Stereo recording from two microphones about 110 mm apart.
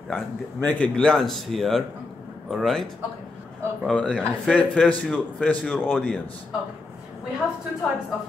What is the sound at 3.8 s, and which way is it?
A man's voice, 10° left (ahead or behind).